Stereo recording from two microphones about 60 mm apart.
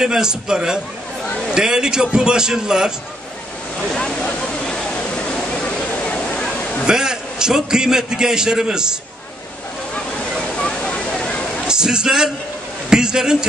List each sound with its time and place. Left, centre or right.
0.0 s a man's voice: centre
3.9 s speech: centre
4.2 s a sound: centre
6.9 s a man's voice: centre
10.4 s a sound: centre
11.6 s a man's voice: centre